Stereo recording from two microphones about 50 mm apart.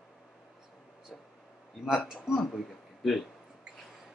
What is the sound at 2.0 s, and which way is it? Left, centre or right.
Speech, centre.